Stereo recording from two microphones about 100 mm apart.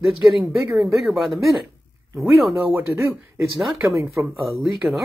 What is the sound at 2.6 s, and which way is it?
Speech, 25° right (ahead or behind).